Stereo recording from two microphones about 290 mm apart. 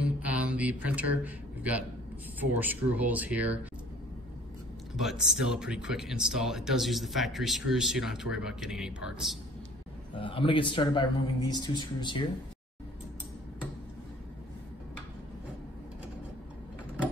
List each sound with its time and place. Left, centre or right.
0.0 s a sound: centre
2.5 s speech: centre
5.0 s speech: centre
10.1 s speech: centre